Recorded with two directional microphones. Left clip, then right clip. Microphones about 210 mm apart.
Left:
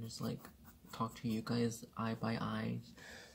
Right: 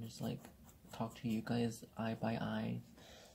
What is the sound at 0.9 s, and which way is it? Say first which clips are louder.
Speech: left 2 dB; 25° left (ahead or behind).